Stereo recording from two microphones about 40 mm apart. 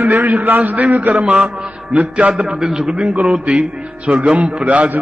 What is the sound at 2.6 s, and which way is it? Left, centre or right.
Speech, centre.